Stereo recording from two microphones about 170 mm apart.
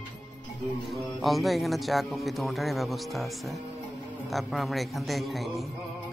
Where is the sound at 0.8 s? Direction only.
Centre (ahead or behind).